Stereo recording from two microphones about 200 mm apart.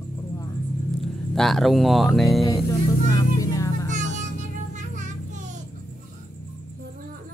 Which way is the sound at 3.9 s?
40° right (ahead or behind).